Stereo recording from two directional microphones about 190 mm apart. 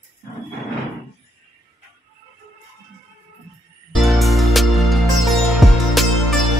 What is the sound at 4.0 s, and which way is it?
Music, centre (ahead or behind).